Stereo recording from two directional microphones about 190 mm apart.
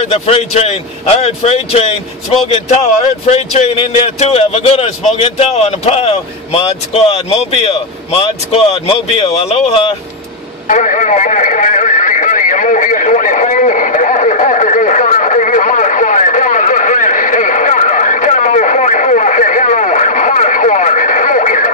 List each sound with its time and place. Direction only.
0.0 s speech: 35° left (ahead or behind)
10.7 s radio: 40° left (ahead or behind)